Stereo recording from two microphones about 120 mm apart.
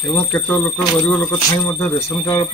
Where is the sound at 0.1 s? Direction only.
10° left (ahead or behind).